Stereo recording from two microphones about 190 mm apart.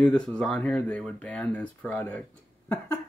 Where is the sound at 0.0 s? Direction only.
5° left (ahead or behind).